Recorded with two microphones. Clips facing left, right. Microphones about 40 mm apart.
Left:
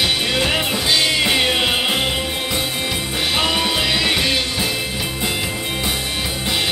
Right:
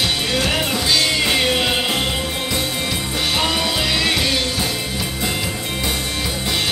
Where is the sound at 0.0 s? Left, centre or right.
Centre.